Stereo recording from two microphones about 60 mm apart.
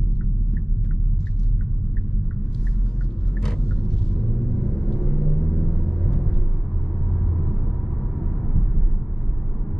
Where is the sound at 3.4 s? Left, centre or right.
Centre.